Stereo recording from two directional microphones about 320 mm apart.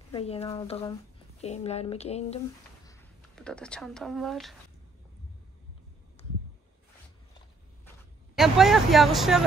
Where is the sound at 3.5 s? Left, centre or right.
Centre.